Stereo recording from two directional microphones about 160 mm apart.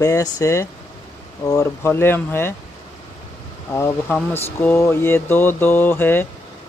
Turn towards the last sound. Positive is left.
turn(degrees=15)  # may be behind; listen again after turning